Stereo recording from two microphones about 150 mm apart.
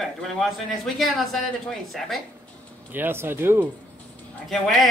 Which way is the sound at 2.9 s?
15° right (ahead or behind).